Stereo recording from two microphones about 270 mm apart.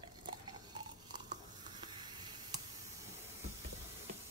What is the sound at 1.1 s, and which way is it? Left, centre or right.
Stir, centre.